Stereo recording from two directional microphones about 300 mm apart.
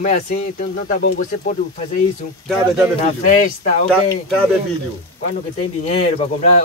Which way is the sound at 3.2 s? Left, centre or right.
Left.